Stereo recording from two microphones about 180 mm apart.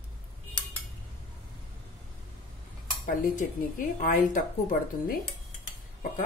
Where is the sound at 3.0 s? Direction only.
50° left (ahead or behind).